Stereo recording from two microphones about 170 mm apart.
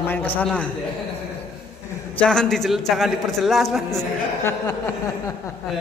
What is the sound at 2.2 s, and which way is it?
A man's voice, 5° left (ahead or behind).